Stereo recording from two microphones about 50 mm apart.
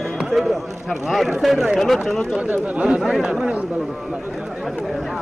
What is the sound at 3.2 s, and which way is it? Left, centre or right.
Speech, centre.